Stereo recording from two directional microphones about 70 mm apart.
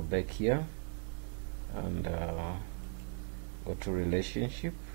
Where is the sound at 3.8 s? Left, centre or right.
Right.